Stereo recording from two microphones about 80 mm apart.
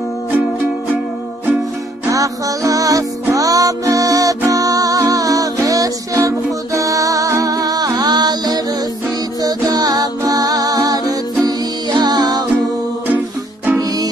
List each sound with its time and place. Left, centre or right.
2.0 s music: right
13.7 s music: right